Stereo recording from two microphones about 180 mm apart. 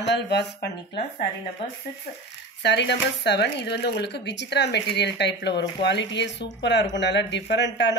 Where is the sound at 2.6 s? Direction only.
70° left (ahead or behind).